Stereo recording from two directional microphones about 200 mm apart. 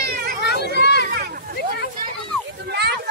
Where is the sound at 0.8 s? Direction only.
55° left (ahead or behind).